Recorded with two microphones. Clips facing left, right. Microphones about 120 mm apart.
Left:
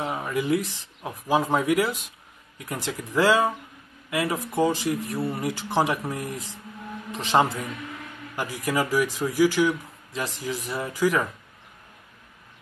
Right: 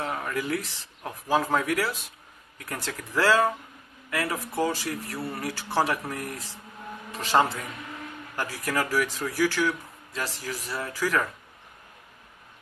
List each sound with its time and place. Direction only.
0.0 s speech: 15° left (ahead or behind)